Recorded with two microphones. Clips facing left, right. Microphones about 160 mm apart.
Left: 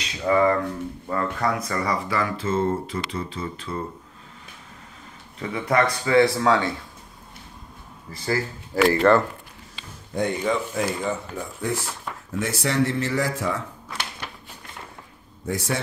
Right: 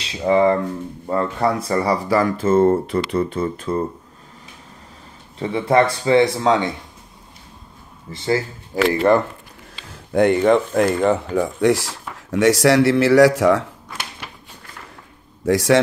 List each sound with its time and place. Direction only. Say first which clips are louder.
0.2 s speech: right 4 dB; 25° right (ahead or behind); by 3.8 s 45° right (ahead or behind)
5.4 s speech: right 6 dB; 30° right (ahead or behind)
8.1 s speech: right 5 dB; 25° right (ahead or behind)
10.1 s speech: right 9 dB; 65° right (ahead or behind); by 13.7 s 90° right
15.4 s speech: right 12 dB; 90° right